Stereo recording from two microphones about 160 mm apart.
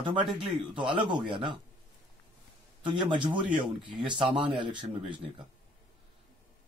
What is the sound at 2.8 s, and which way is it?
A man's voice, 30° right (ahead or behind).